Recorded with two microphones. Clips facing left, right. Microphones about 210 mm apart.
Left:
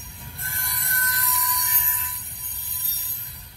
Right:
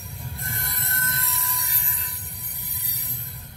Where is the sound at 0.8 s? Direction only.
25° right (ahead or behind).